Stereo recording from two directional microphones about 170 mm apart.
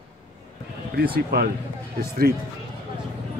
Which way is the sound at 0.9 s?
65° right (ahead or behind).